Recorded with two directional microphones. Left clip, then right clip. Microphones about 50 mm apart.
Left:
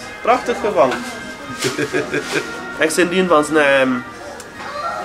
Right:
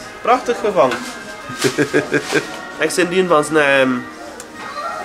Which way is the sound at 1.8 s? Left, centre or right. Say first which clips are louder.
Right 4 dB; right.